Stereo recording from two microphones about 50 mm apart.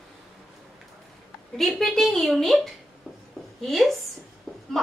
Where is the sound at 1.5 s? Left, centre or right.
Centre.